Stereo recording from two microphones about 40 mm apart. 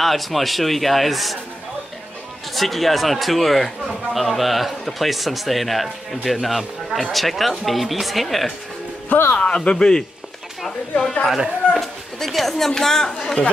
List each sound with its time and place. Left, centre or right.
0.0 s speech: centre
2.5 s speech: centre
9.1 s speech: left
9.7 s speech: centre
11.3 s speech: centre
11.8 s speech: centre